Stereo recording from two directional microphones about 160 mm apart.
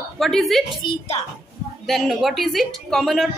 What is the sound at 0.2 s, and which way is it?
Speech, centre (ahead or behind).